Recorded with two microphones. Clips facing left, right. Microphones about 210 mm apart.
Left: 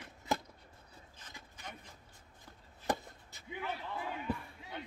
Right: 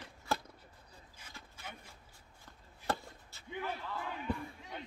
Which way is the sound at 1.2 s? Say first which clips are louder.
Left 1 dB; 10° right (ahead or behind).